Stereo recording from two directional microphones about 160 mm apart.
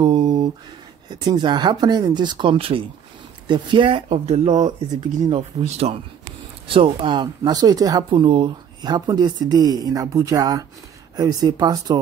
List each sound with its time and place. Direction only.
0.0 s a sound: 25° right (ahead or behind)
1.1 s speech: 25° right (ahead or behind); by 4.6 s 45° right (ahead or behind)
5.2 s speech: 35° right (ahead or behind)